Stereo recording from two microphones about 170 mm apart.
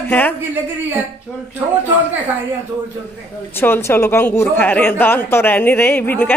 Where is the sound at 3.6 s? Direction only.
15° left (ahead or behind).